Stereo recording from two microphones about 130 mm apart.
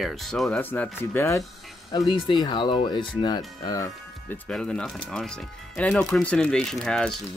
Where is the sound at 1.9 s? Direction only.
35° left (ahead or behind).